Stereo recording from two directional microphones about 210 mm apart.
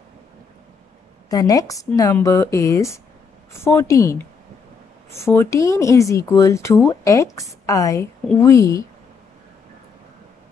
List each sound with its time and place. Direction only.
1.3 s speech: 15° left (ahead or behind)